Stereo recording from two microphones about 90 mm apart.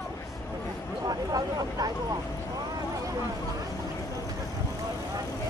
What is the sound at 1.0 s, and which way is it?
Speech, 45° right (ahead or behind).